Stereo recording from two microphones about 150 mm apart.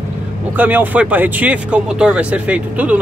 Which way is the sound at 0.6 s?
10° right (ahead or behind).